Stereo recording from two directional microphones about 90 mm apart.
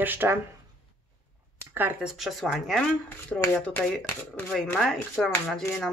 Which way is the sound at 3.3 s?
15° left (ahead or behind).